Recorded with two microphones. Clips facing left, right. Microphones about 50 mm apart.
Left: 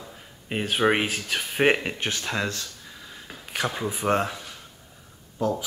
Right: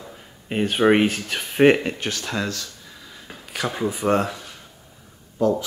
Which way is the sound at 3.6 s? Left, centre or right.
Centre.